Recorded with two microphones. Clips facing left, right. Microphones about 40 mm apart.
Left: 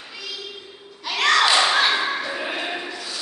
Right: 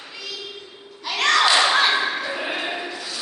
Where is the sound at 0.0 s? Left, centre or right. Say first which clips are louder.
Even; centre.